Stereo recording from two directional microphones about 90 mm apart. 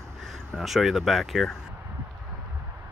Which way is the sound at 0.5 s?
Centre (ahead or behind).